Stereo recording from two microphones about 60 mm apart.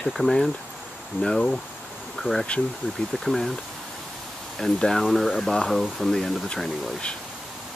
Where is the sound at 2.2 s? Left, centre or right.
Centre.